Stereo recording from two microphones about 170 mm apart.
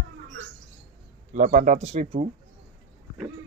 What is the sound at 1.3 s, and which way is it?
Speech, 45° right (ahead or behind).